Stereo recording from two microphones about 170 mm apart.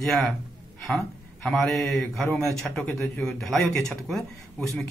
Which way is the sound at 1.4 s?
5° left (ahead or behind).